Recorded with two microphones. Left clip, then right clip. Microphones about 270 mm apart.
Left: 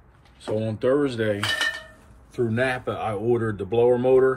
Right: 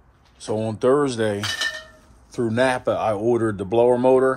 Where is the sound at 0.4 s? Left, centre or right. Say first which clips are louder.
Right 3 dB; centre.